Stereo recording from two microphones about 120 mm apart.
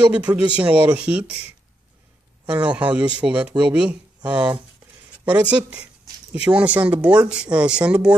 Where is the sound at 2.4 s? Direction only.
10° right (ahead or behind).